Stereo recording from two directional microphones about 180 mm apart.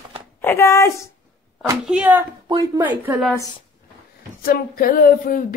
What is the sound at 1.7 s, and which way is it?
Speech, 10° right (ahead or behind).